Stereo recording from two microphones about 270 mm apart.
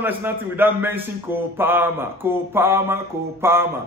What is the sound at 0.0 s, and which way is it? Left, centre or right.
A man's voice, centre.